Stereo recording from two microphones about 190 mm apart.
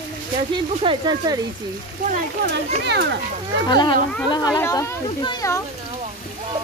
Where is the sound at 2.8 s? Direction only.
60° right (ahead or behind).